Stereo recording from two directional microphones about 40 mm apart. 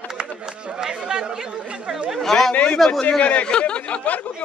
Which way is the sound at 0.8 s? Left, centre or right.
Centre.